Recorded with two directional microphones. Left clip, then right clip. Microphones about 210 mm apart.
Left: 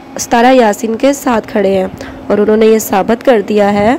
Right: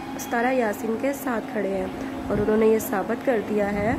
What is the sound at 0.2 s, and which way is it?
A woman's voice, 35° left (ahead or behind).